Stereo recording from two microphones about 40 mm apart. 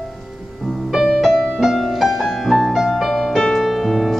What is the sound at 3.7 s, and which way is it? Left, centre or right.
Music, centre.